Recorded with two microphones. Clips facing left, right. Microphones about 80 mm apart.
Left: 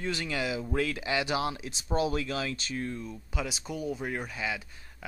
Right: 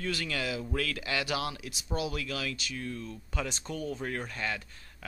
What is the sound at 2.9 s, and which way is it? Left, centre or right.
Speech, centre.